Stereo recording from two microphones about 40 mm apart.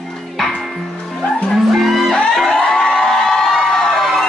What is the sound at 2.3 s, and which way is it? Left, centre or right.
Music, centre.